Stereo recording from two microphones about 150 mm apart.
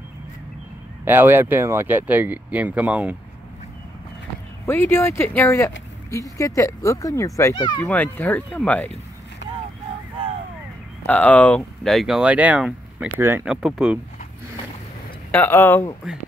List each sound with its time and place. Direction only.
1.0 s speech: 15° right (ahead or behind)
4.6 s speech: 15° left (ahead or behind)
7.5 s speech: 35° left (ahead or behind)
7.8 s speech: 10° left (ahead or behind)
11.1 s speech: 10° left (ahead or behind)
15.3 s speech: 15° left (ahead or behind)